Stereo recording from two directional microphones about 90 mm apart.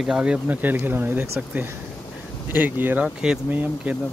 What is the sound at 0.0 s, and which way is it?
Speech, 10° right (ahead or behind).